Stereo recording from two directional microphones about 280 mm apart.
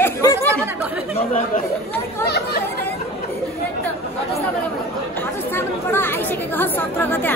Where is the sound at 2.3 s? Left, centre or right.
Left.